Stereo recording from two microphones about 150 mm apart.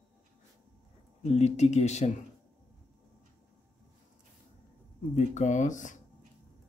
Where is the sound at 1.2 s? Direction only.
45° left (ahead or behind).